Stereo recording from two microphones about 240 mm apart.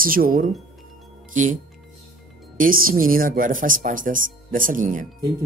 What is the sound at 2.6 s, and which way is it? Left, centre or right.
Speech, right.